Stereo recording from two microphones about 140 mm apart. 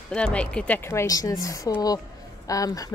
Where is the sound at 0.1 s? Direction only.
10° left (ahead or behind).